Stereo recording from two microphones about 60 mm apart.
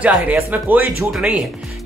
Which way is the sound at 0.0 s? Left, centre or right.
Right.